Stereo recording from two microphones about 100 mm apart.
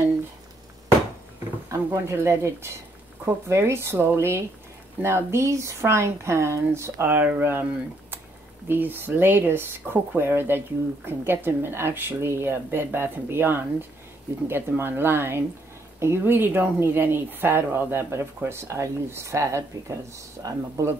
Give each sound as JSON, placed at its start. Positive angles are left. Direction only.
{"t": 1.7, "sound": "speech", "side_deg": -25}
{"t": 8.6, "sound": "speech", "side_deg": -20}